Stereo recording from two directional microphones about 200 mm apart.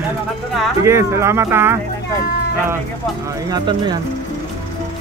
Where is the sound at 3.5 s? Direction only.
20° right (ahead or behind).